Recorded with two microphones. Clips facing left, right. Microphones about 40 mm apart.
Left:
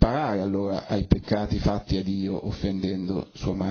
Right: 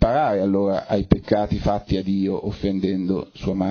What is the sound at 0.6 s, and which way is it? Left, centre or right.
Speech, right.